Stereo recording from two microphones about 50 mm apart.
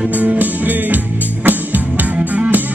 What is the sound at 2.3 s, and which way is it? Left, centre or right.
Music, right.